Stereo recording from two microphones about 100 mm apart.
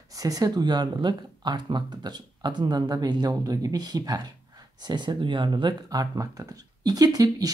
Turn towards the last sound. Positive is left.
turn(degrees=-40)  # may be behind; listen again after turning